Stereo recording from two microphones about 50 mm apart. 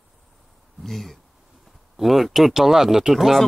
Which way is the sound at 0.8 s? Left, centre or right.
Centre.